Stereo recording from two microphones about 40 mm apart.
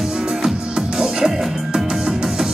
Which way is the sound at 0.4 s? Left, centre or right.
Centre.